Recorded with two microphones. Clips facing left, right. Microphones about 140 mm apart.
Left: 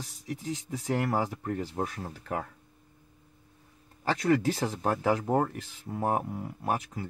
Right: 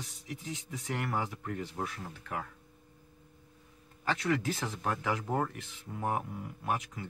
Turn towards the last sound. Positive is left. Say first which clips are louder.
# left 4 dB
turn(degrees=35)  # may be behind; listen again after turning